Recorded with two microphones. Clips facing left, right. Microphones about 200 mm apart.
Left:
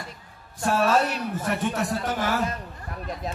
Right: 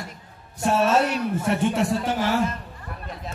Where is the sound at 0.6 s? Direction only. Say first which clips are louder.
Right 2 dB; 25° right (ahead or behind).